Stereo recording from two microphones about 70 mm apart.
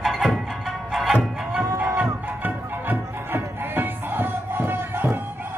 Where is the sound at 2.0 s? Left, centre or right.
Right.